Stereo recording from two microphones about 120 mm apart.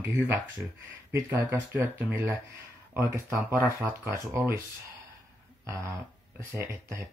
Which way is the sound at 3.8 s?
25° right (ahead or behind).